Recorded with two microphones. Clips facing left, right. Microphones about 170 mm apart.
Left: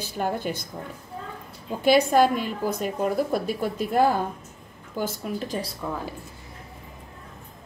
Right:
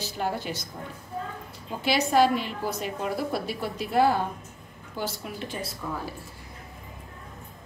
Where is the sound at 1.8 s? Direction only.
50° left (ahead or behind).